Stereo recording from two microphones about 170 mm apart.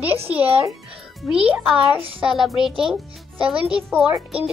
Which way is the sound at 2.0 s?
35° right (ahead or behind).